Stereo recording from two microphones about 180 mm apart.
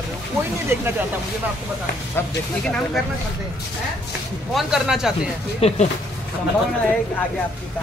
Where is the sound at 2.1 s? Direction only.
5° left (ahead or behind).